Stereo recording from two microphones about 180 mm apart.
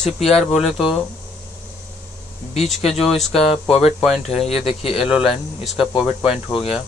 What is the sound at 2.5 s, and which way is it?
Speech, 35° left (ahead or behind).